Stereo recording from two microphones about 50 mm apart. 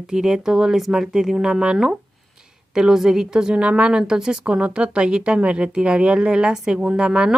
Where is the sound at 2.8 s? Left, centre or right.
Centre.